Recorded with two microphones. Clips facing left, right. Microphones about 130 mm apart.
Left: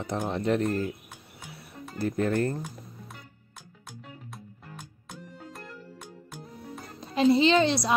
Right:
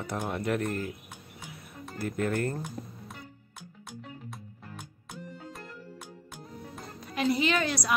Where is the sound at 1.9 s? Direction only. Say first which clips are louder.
Left 4 dB; 30° left (ahead or behind).